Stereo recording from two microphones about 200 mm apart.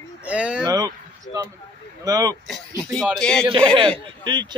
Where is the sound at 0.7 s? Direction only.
20° right (ahead or behind).